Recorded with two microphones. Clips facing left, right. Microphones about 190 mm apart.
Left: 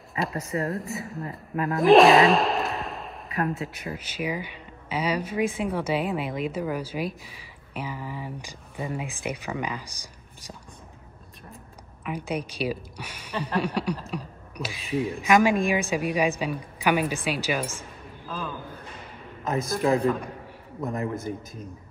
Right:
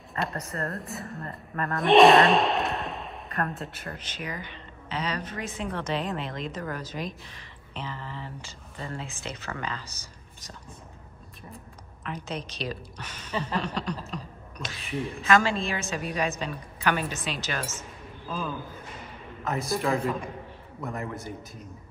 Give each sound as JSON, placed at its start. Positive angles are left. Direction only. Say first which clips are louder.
{"t": 0.2, "sound": "speech", "louder": "left 4 dB", "side_deg": 0}
{"t": 12.0, "sound": "speech", "louder": "left 5 dB", "side_deg": 10}
{"t": 19.8, "sound": "a man's voice", "louder": "left 6 dB", "side_deg": 35}
{"t": 20.8, "sound": "a man's voice", "louder": "left 5 dB", "side_deg": 20}